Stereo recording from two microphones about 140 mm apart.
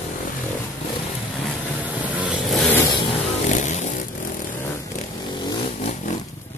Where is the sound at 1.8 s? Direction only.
10° right (ahead or behind).